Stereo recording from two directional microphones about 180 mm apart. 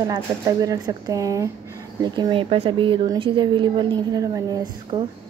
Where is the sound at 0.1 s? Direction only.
20° right (ahead or behind).